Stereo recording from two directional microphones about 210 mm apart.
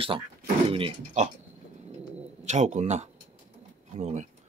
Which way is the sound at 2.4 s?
35° right (ahead or behind).